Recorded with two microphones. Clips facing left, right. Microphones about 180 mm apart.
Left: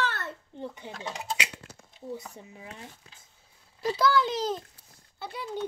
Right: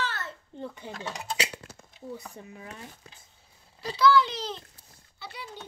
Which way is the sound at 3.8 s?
45° left (ahead or behind).